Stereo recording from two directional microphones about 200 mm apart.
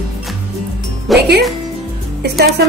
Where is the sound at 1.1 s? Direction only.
Centre (ahead or behind).